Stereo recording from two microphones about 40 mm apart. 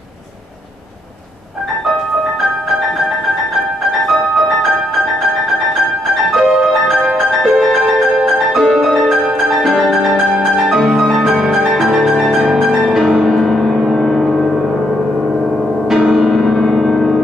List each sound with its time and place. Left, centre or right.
4.0 s music: centre
6.3 s music: centre
15.9 s music: centre